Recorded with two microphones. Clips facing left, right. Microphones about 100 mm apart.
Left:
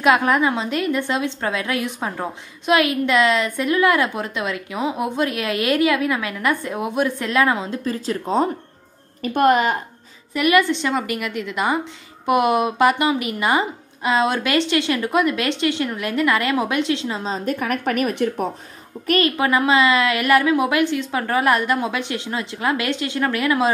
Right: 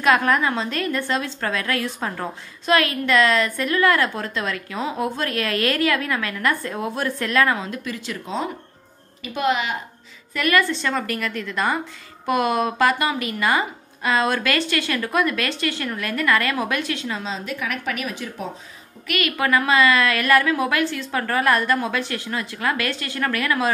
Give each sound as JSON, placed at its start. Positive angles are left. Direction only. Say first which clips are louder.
{"t": 0.0, "sound": "a woman's voice", "louder": "left 2 dB", "side_deg": 20}
{"t": 7.9, "sound": "a woman's voice", "louder": "left 10 dB", "side_deg": 40}
{"t": 10.3, "sound": "a woman's voice", "louder": "left 3 dB", "side_deg": 15}
{"t": 17.2, "sound": "a woman's voice", "louder": "left 5 dB", "side_deg": 45}
{"t": 19.0, "sound": "speech", "louder": "left 6 dB", "side_deg": 35}
{"t": 19.3, "sound": "a woman's voice", "louder": "left 2 dB", "side_deg": 20}